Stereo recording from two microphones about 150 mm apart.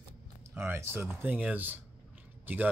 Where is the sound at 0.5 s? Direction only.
15° right (ahead or behind).